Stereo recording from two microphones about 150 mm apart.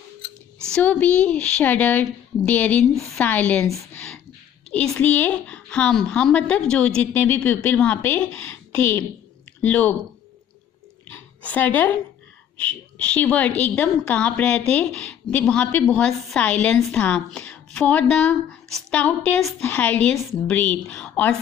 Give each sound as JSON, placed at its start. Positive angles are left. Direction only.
{"t": 0.7, "sound": "a woman's voice", "side_deg": 10}
{"t": 4.6, "sound": "a woman's voice", "side_deg": 5}
{"t": 11.1, "sound": "a sound", "side_deg": 10}
{"t": 12.6, "sound": "a woman's voice", "side_deg": 10}